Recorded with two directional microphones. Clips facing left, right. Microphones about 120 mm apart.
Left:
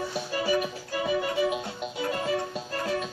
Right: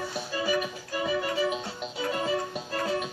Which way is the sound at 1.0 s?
20° left (ahead or behind).